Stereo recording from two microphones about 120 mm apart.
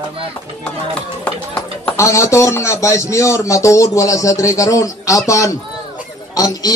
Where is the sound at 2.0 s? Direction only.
25° left (ahead or behind).